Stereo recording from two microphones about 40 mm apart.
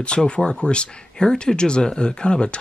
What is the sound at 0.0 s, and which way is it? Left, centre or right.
Speech, left.